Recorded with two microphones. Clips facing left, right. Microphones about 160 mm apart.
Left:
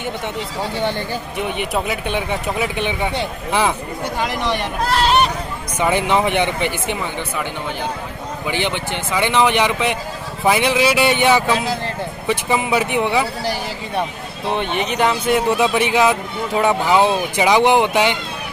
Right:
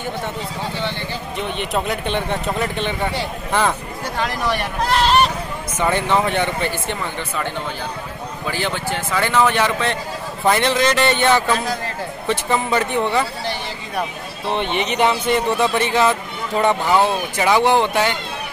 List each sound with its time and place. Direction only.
0.7 s speech: 45° left (ahead or behind)
1.6 s speech: 10° left (ahead or behind)
5.8 s speech: 10° left (ahead or behind)
8.5 s speech: 20° left (ahead or behind)
14.4 s speech: centre (ahead or behind)